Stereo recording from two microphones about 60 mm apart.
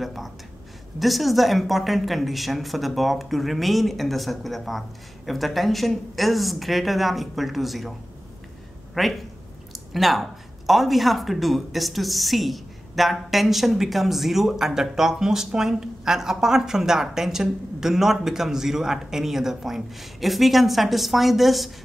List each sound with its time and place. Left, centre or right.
0.0 s a sound: centre
0.9 s speech: centre
8.9 s speech: centre